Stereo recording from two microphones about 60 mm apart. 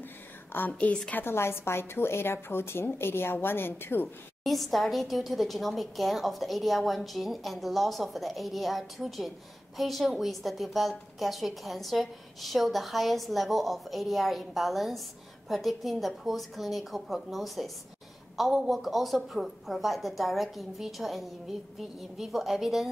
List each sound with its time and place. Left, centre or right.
0.5 s a woman's voice: left
4.4 s a woman's voice: centre